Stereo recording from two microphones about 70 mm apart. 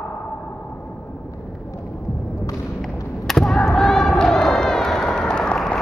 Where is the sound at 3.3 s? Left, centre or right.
Centre.